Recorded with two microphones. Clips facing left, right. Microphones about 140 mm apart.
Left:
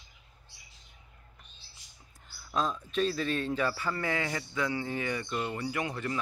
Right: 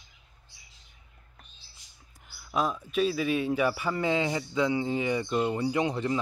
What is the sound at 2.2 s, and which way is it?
A man's voice, 10° right (ahead or behind).